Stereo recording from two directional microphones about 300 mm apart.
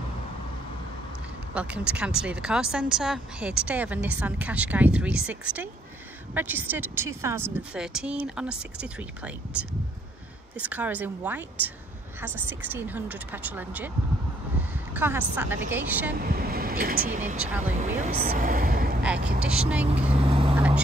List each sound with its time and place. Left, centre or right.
1.5 s speech: centre
15.0 s a woman's voice: centre
16.2 s speech: right
19.0 s speech: centre
20.2 s speech: centre
20.5 s quack: centre